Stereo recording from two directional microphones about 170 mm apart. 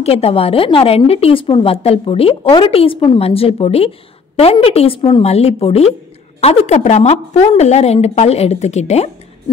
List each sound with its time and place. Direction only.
0.0 s a woman's voice: 35° left (ahead or behind)